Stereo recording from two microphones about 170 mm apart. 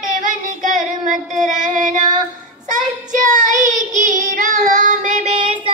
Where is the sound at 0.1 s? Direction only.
50° right (ahead or behind).